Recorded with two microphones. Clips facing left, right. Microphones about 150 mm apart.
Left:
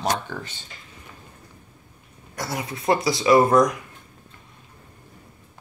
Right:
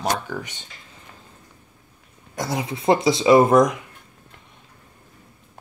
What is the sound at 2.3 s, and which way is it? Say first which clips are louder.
Speech: right 4 dB; 20° right (ahead or behind).